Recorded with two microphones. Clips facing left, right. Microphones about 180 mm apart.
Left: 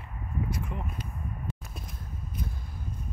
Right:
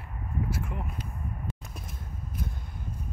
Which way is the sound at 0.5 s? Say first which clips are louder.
Even; 5° right (ahead or behind).